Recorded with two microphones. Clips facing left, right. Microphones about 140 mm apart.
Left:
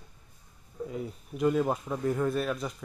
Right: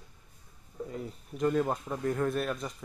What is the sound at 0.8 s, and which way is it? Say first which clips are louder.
A man's voice: left 4 dB; 5° left (ahead or behind).